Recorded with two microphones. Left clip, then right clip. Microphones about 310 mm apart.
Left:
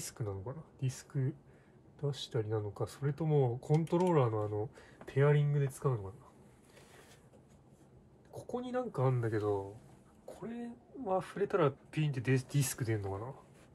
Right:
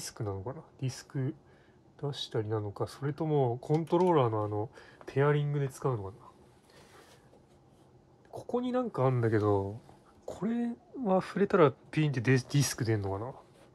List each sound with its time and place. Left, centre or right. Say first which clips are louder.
0.0 s speech: right 4 dB; centre
8.3 s speech: right 7 dB; centre